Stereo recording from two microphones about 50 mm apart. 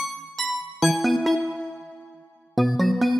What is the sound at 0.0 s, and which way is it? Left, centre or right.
Music, centre.